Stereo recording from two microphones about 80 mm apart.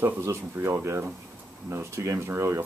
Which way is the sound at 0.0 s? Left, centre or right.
Right.